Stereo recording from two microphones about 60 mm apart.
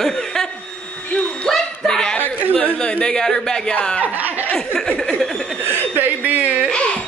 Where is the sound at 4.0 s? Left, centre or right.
Right.